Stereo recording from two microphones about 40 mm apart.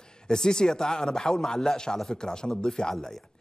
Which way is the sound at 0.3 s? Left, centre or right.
Centre.